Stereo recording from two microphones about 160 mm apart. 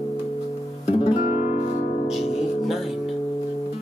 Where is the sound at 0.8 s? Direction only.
35° left (ahead or behind).